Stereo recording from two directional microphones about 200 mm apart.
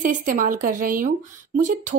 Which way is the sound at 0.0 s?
40° right (ahead or behind).